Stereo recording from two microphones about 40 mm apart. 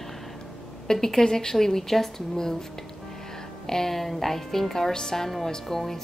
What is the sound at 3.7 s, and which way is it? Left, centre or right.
A woman's voice, centre.